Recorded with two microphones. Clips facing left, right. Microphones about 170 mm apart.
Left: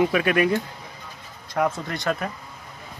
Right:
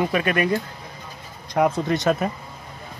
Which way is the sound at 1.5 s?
20° right (ahead or behind).